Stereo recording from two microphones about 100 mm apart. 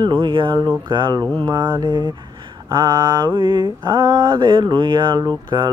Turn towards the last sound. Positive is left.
turn(degrees=-45)  # may be behind; listen again after turning